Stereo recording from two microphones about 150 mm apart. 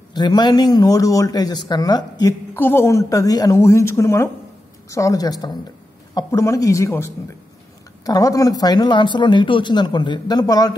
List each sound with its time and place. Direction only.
0.1 s speech: 30° left (ahead or behind)
2.5 s speech: 15° left (ahead or behind)